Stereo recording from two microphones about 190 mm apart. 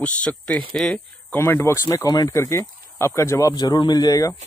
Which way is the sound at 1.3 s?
10° left (ahead or behind).